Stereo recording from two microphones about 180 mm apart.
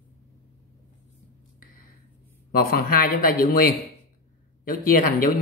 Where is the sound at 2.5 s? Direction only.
55° left (ahead or behind).